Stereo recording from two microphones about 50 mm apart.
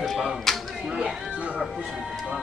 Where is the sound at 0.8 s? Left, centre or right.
Centre.